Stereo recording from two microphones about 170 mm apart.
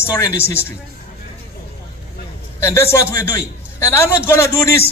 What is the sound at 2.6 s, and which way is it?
A man's voice, 15° left (ahead or behind).